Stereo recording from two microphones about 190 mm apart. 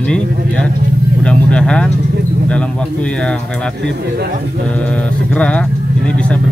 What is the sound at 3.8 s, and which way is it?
Speech, 65° right (ahead or behind).